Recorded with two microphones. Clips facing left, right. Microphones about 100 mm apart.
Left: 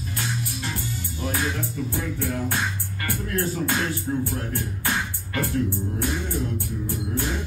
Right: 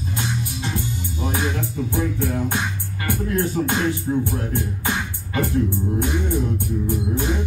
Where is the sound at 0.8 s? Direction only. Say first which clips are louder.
Right 4 dB; 20° right (ahead or behind).